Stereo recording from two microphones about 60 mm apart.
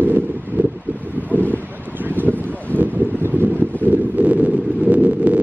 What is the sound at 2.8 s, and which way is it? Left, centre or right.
Wind, right.